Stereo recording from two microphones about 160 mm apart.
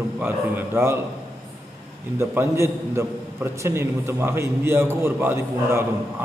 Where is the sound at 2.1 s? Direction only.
15° right (ahead or behind).